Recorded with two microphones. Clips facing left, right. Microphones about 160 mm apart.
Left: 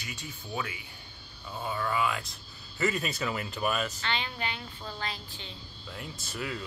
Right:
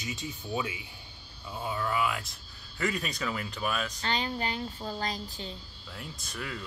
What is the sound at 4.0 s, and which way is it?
A woman's voice, 40° right (ahead or behind).